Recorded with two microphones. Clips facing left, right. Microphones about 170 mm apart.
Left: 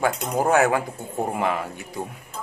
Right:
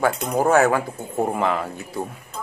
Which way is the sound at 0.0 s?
15° left (ahead or behind).